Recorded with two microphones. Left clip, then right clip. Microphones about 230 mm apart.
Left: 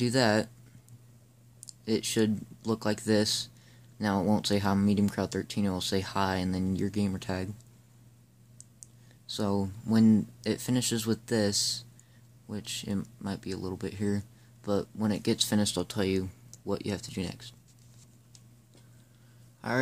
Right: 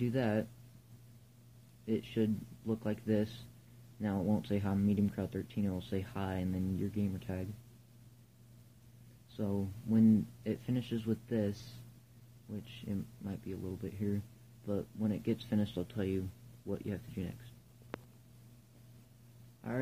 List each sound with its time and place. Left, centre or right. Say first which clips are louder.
0.0 s speech: left 9 dB; left
1.9 s speech: left 7 dB; left
9.9 s speech: left 5 dB; left